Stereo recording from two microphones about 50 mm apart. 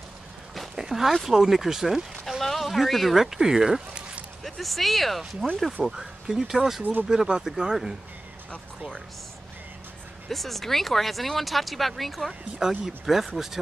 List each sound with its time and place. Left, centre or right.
0.7 s speech: centre
4.4 s speech: centre
5.9 s speech: centre
6.8 s speech: right
7.1 s speech: centre
10.2 s speech: centre
12.5 s speech: centre